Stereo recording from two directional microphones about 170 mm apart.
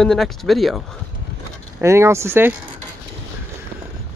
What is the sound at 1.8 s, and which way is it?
Speech, 15° right (ahead or behind).